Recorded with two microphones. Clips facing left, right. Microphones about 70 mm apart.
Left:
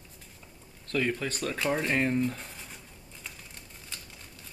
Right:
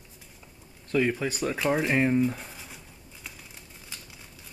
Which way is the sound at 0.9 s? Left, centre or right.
Centre.